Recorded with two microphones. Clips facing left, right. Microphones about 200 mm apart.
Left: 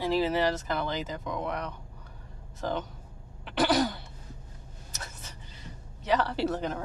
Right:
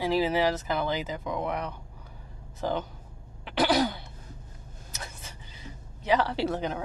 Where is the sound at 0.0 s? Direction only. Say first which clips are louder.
Right 1 dB; centre (ahead or behind).